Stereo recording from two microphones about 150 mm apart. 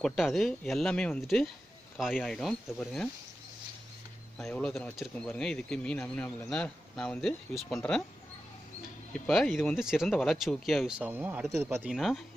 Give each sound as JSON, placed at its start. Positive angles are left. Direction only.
{"t": 0.0, "sound": "speech", "side_deg": 0}
{"t": 4.4, "sound": "speech", "side_deg": 0}
{"t": 9.2, "sound": "speech", "side_deg": 0}
{"t": 11.9, "sound": "speech", "side_deg": 0}